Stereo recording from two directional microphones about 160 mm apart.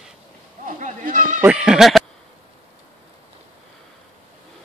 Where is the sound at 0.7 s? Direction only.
55° right (ahead or behind).